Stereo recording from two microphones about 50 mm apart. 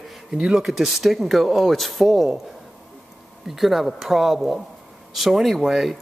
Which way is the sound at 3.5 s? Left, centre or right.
Centre.